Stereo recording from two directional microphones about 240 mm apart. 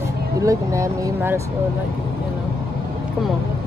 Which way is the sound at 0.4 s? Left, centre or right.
Centre.